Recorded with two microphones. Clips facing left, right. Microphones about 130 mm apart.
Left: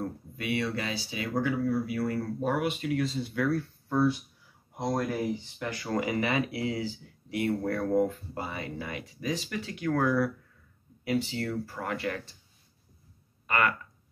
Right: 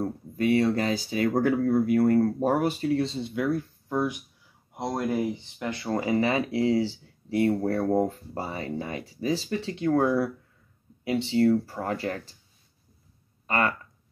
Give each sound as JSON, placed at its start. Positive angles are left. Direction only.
{"t": 0.0, "sound": "speech", "side_deg": -40}
{"t": 5.6, "sound": "speech", "side_deg": -25}
{"t": 13.5, "sound": "speech", "side_deg": -35}